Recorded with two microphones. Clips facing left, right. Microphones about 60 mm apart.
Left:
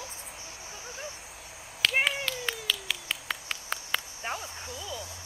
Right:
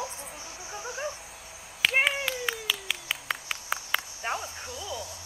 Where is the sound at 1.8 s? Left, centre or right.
Centre.